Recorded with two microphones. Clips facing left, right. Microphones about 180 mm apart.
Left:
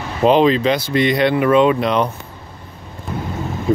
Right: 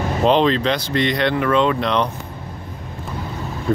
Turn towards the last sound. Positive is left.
turn(degrees=5)  # may be behind; listen again after turning